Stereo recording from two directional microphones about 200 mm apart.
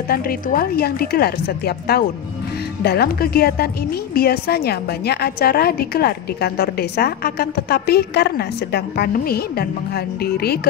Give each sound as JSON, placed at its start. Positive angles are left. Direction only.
{"t": 0.1, "sound": "a woman's voice", "side_deg": 45}